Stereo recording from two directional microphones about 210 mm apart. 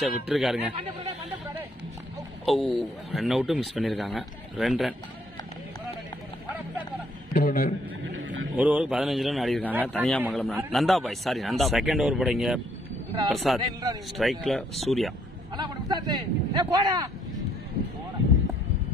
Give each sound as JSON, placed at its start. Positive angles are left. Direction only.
{"t": 0.0, "sound": "speech", "side_deg": 0}
{"t": 2.4, "sound": "speech", "side_deg": 0}
{"t": 7.3, "sound": "a man's voice", "side_deg": 45}
{"t": 8.2, "sound": "a sound", "side_deg": -65}
{"t": 8.5, "sound": "speech", "side_deg": -5}
{"t": 15.5, "sound": "speech", "side_deg": -20}